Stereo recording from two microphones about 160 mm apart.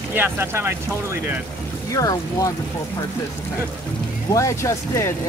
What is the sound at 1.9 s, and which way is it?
Speech, 20° left (ahead or behind).